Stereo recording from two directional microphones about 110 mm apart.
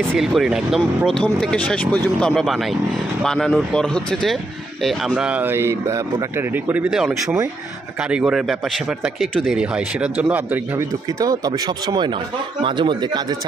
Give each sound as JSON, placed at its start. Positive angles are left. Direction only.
{"t": 0.2, "sound": "speech", "side_deg": -5}
{"t": 4.8, "sound": "speech", "side_deg": -5}
{"t": 6.9, "sound": "speech", "side_deg": -5}
{"t": 9.6, "sound": "speech", "side_deg": -10}
{"t": 11.1, "sound": "speech", "side_deg": -35}